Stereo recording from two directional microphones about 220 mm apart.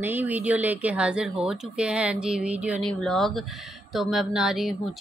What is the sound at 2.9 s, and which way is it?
Speech, 5° left (ahead or behind).